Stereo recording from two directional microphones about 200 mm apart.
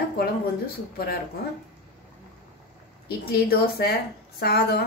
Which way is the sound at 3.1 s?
50° left (ahead or behind).